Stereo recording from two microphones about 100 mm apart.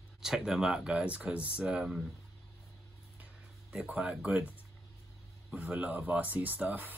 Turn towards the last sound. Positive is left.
turn(degrees=-15)  # may be behind; listen again after turning